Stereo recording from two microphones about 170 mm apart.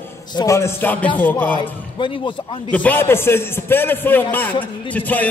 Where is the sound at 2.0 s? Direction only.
30° left (ahead or behind).